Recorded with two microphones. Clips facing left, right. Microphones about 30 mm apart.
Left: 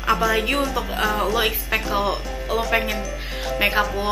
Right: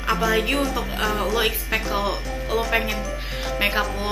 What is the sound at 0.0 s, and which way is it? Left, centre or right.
Speech, centre.